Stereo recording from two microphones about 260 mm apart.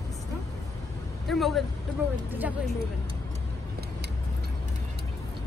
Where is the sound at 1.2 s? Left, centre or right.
Centre.